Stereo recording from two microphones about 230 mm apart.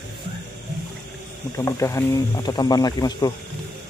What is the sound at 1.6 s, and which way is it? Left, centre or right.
Speech, centre.